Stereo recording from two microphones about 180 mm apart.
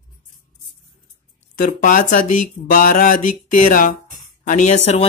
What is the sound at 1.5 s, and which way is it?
Speech, 45° left (ahead or behind).